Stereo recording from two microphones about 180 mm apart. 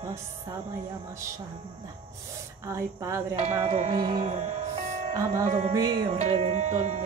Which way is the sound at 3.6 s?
40° right (ahead or behind).